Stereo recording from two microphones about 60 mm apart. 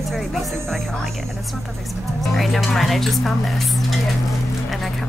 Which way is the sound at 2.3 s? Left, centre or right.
Centre.